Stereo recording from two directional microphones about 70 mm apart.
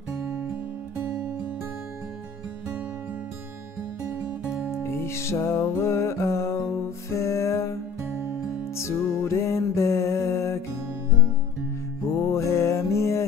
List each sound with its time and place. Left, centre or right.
0.1 s music: right
4.8 s music: left
8.0 s music: right
8.7 s music: left
12.2 s music: left